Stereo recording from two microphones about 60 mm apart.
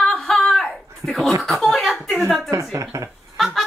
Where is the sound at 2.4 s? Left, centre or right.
Right.